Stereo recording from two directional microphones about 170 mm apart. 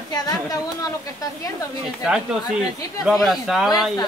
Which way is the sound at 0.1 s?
20° left (ahead or behind).